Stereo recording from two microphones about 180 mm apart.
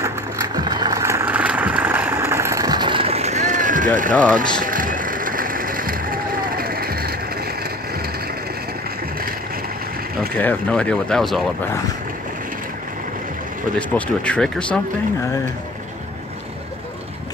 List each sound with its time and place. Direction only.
0.0 s vehicle: 20° right (ahead or behind); by 7.2 s 55° right (ahead or behind)
10.3 s speech: 5° left (ahead or behind)
13.7 s speech: 5° left (ahead or behind)